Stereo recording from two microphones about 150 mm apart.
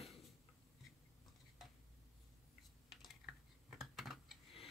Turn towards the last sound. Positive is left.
turn(degrees=0)  # may be behind; listen again after turning